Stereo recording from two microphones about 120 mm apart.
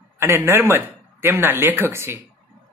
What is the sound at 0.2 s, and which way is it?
Speech, 20° right (ahead or behind).